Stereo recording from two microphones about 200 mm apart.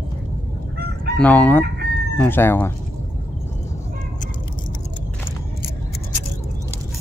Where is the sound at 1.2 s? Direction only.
5° left (ahead or behind).